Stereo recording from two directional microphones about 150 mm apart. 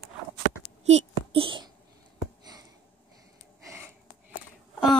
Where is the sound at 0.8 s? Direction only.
40° right (ahead or behind).